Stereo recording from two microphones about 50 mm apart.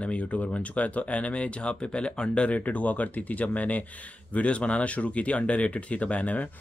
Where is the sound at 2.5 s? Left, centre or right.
Left.